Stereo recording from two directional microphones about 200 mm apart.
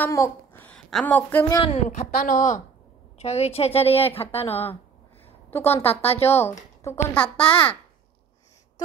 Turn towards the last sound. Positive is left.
turn(degrees=10)  # may be behind; listen again after turning